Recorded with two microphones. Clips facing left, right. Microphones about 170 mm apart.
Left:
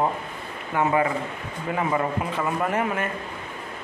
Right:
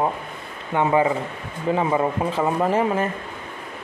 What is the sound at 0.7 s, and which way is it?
Speech, 25° right (ahead or behind).